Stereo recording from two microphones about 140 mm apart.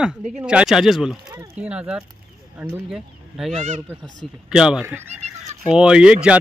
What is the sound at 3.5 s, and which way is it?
Speech, 55° right (ahead or behind).